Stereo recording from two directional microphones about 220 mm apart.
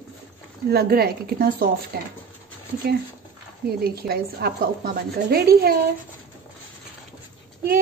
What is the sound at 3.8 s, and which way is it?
A woman's voice, 45° right (ahead or behind).